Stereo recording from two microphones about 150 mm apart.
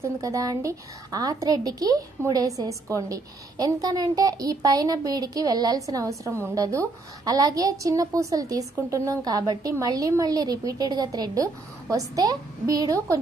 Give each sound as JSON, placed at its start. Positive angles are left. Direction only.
{"t": 0.0, "sound": "a woman's voice", "side_deg": -20}